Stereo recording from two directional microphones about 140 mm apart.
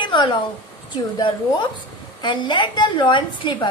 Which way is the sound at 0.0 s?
35° left (ahead or behind).